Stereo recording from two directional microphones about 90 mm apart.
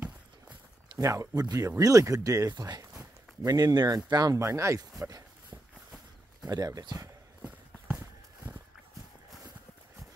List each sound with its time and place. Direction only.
0.9 s speech: 35° right (ahead or behind)
6.4 s speech: 45° right (ahead or behind)